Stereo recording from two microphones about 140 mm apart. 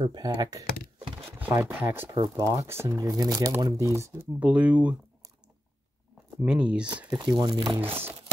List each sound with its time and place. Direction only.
0.0 s speech: 35° right (ahead or behind)
1.5 s speech: 15° right (ahead or behind)
4.4 s speech: 10° right (ahead or behind)
6.4 s speech: 10° right (ahead or behind)
7.1 s speech: 30° right (ahead or behind)
7.8 s speech: 15° right (ahead or behind)